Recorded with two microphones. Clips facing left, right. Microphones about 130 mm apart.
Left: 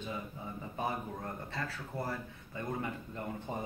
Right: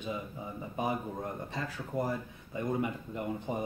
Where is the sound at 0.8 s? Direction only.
15° right (ahead or behind).